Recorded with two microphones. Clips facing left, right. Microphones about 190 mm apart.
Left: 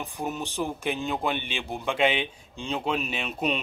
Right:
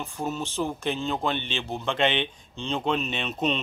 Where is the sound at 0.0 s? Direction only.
15° left (ahead or behind).